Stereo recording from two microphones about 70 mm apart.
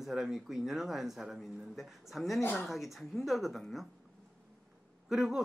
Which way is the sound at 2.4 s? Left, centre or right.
Left.